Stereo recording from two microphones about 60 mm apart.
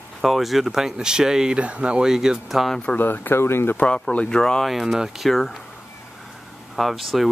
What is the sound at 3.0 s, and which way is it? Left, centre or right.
Speech, left.